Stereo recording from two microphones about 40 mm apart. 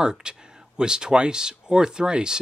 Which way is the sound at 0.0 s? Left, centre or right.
Right.